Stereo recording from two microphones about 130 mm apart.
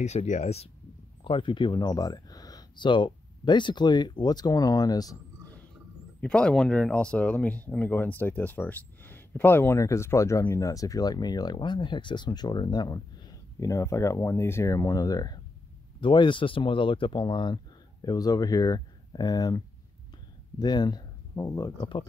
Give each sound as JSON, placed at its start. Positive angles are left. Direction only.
{"t": 0.0, "sound": "speech", "side_deg": 60}
{"t": 1.2, "sound": "speech", "side_deg": 40}
{"t": 6.2, "sound": "speech", "side_deg": 5}